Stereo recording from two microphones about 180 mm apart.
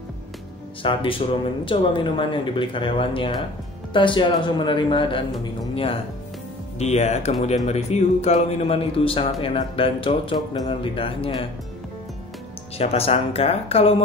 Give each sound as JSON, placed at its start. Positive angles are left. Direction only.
{"t": 0.8, "sound": "a man's voice", "side_deg": 30}
{"t": 12.7, "sound": "a man's voice", "side_deg": 35}